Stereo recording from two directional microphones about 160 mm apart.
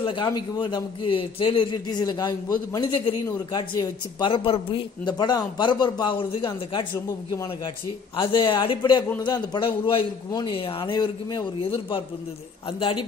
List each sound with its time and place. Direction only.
0.0 s a man's voice: 30° left (ahead or behind)